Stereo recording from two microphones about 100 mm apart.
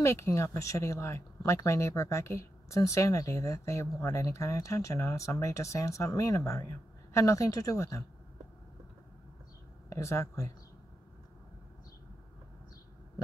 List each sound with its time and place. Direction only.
0.0 s speech: 30° left (ahead or behind)
9.8 s speech: 30° left (ahead or behind)